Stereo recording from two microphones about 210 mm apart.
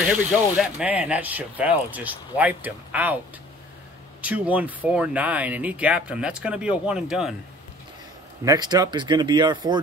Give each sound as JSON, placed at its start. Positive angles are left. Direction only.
{"t": 0.2, "sound": "speech", "side_deg": -5}
{"t": 4.2, "sound": "speech", "side_deg": -5}
{"t": 8.5, "sound": "speech", "side_deg": -20}